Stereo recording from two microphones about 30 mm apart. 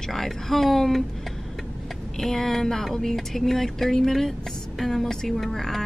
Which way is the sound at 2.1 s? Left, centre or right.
Centre.